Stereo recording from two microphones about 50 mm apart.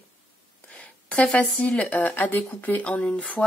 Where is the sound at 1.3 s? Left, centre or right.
Left.